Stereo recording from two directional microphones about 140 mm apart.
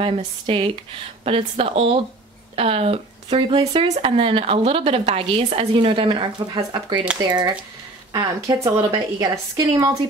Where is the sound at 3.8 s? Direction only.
50° right (ahead or behind).